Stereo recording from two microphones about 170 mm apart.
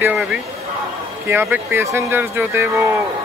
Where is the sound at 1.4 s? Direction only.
10° right (ahead or behind).